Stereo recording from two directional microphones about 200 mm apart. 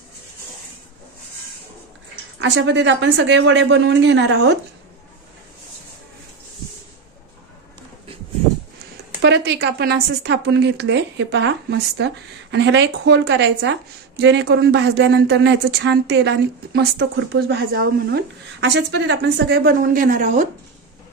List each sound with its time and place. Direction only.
2.3 s a woman's voice: 65° right (ahead or behind)
9.2 s a woman's voice: 60° right (ahead or behind); by 20.4 s 40° right (ahead or behind)